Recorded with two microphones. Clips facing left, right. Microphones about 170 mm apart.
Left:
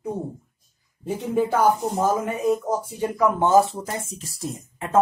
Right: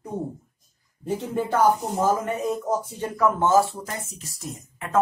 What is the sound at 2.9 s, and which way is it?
A woman's voice, 15° left (ahead or behind).